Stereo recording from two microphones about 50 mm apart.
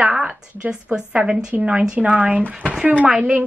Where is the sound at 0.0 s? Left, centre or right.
Right.